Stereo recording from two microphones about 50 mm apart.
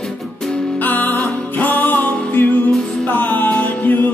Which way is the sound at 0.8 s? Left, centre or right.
Left.